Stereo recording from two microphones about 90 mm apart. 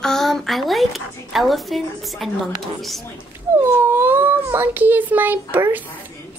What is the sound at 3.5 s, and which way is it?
A woman's voice, 30° right (ahead or behind).